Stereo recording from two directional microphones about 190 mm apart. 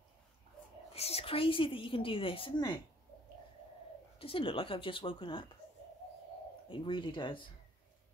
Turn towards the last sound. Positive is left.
turn(degrees=25)  # may be behind; listen again after turning